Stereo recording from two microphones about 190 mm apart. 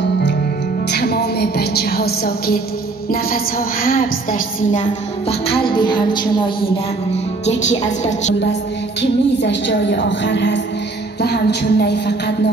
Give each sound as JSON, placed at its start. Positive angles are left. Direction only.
{"t": 0.9, "sound": "a woman's voice", "side_deg": 55}
{"t": 3.8, "sound": "a woman's voice", "side_deg": 50}
{"t": 5.5, "sound": "music", "side_deg": 25}
{"t": 7.4, "sound": "a woman's voice", "side_deg": 35}
{"t": 9.0, "sound": "a woman's voice", "side_deg": 70}